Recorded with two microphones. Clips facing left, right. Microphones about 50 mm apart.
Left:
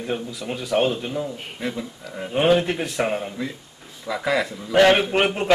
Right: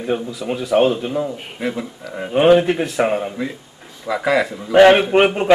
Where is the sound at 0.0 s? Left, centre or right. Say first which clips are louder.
Right 6 dB; centre.